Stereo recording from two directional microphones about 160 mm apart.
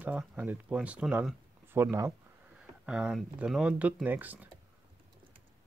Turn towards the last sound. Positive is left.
turn(degrees=-10)  # may be behind; listen again after turning